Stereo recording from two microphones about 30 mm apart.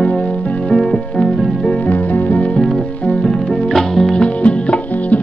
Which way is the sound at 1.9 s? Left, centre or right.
Left.